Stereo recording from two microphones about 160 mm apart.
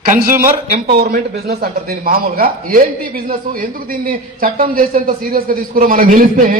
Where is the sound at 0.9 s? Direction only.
80° right.